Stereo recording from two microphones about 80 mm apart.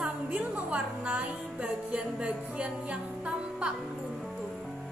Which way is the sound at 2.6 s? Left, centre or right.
Centre.